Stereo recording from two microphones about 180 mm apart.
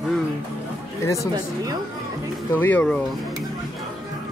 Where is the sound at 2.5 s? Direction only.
10° left (ahead or behind).